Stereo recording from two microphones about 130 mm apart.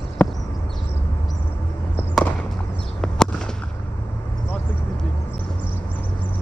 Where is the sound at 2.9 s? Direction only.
5° left (ahead or behind).